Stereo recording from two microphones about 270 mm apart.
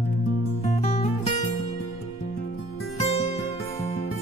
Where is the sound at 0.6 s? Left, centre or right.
Left.